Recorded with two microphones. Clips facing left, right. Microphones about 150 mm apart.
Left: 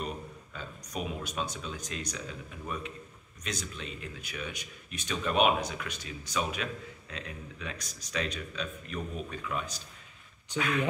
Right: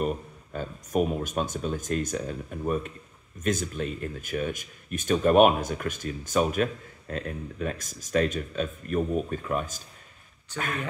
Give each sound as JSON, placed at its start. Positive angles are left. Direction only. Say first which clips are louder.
{"t": 0.0, "sound": "speech", "louder": "right 8 dB", "side_deg": -50}
{"t": 10.5, "sound": "speech", "louder": "left 1 dB", "side_deg": 15}